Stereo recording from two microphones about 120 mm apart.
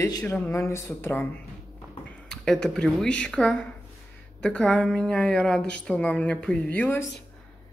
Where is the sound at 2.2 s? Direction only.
5° left (ahead or behind).